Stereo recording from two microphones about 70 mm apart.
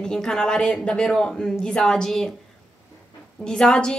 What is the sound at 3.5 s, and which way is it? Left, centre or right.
Speech, centre.